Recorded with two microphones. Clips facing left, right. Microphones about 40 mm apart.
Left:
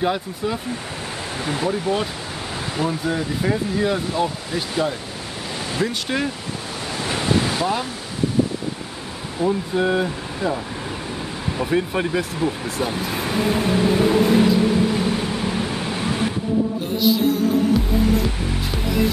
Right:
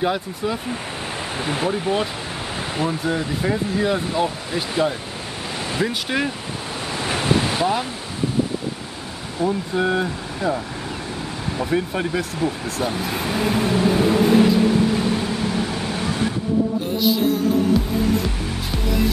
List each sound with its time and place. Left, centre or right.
0.0 s speech: centre
1.4 s speech: right
1.7 s speech: centre
6.9 s waves: centre
9.4 s speech: centre
11.5 s vehicle: centre
17.2 s music: centre